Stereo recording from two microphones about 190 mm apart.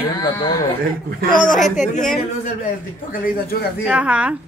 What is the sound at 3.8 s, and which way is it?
Speech, 5° right (ahead or behind).